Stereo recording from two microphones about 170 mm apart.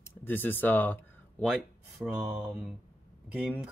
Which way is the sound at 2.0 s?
5° right (ahead or behind).